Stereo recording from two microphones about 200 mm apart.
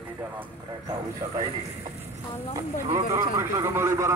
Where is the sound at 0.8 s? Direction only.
20° right (ahead or behind).